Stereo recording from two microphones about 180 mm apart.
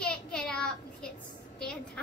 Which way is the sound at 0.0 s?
5° left (ahead or behind).